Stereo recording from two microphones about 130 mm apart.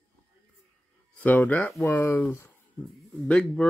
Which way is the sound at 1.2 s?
10° left (ahead or behind).